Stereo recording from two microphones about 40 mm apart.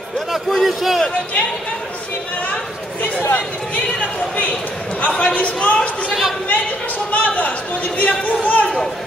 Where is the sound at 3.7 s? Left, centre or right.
Left.